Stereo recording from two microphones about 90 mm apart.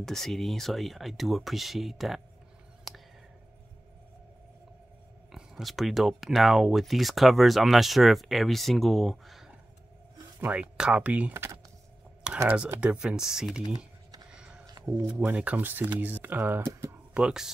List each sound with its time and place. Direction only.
0.0 s speech: 5° left (ahead or behind)
5.3 s speech: centre (ahead or behind)
10.4 s speech: 15° right (ahead or behind)
12.4 s speech: 15° right (ahead or behind)
14.3 s a sound: 10° right (ahead or behind)
15.1 s speech: 15° right (ahead or behind)
17.1 s speech: 10° right (ahead or behind)